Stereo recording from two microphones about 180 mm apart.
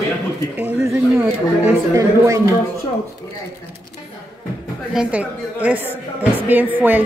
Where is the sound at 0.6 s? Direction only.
10° right (ahead or behind).